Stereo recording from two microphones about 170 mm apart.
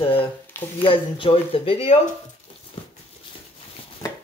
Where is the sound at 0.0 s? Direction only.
30° left (ahead or behind).